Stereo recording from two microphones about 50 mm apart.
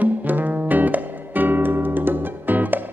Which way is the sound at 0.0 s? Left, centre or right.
Right.